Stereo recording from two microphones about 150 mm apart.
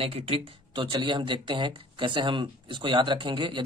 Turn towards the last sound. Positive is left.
turn(degrees=-35)  # may be behind; listen again after turning